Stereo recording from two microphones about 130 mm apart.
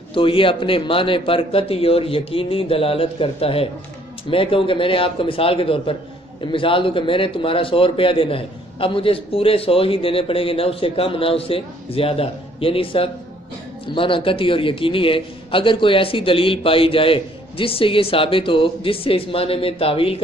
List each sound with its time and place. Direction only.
0.1 s a man's voice: 40° left (ahead or behind)